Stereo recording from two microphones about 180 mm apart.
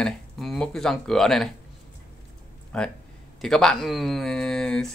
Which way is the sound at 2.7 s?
5° left (ahead or behind).